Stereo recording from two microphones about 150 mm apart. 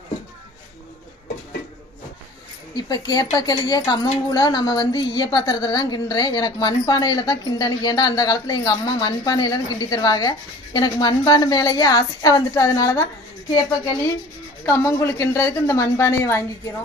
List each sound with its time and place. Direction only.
2.7 s a woman's voice: 25° left (ahead or behind)
14.7 s a woman's voice: 20° left (ahead or behind)